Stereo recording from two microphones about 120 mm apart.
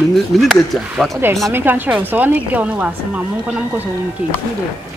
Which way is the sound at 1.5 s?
15° right (ahead or behind).